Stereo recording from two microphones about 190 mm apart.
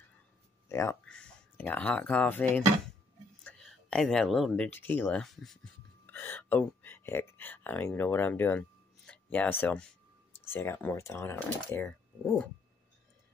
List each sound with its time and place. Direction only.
0.7 s speech: 15° left (ahead or behind)